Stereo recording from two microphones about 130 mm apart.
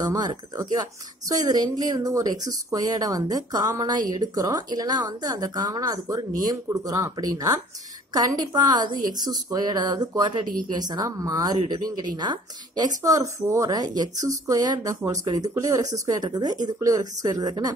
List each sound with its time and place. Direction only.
0.1 s speech: 25° right (ahead or behind)
9.5 s speech: 30° right (ahead or behind)